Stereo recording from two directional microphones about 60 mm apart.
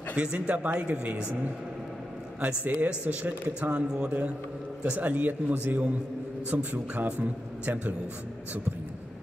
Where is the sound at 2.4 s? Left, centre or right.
Right.